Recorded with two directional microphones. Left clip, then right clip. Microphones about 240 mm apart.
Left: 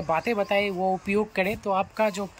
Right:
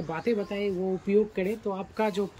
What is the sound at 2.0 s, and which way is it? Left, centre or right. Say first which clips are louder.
Speech: left 3 dB; centre.